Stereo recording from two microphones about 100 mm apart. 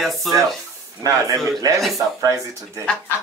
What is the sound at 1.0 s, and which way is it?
Speech, 30° right (ahead or behind).